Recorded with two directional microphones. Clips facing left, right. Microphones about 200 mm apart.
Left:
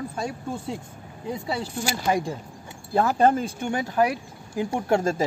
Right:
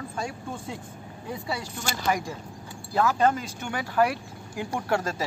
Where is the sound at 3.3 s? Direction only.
50° left (ahead or behind).